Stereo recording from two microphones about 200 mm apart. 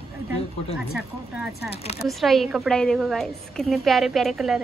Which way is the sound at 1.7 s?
30° left (ahead or behind).